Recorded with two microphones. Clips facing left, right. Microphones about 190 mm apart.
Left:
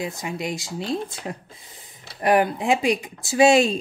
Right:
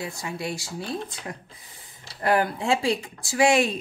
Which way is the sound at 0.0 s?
20° left (ahead or behind).